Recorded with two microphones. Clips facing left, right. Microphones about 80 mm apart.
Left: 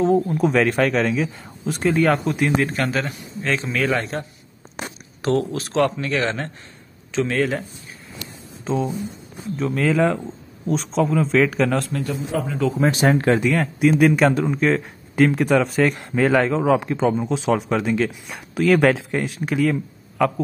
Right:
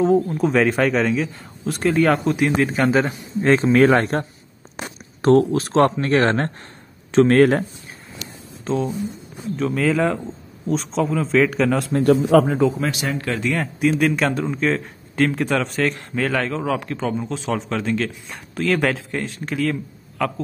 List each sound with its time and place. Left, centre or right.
0.0 s speech: centre
2.8 s speech: centre
3.5 s speech: right
5.2 s speech: right
8.6 s speech: centre
12.3 s a man's voice: right
12.9 s speech: left
13.5 s speech: centre